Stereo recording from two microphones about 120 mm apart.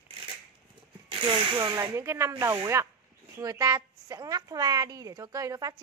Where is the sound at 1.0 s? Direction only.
45° right (ahead or behind).